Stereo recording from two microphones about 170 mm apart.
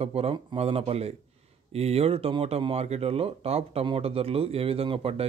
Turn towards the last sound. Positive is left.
turn(degrees=-35)  # may be behind; listen again after turning